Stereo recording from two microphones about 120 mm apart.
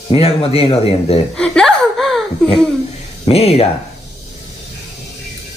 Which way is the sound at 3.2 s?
60° left (ahead or behind).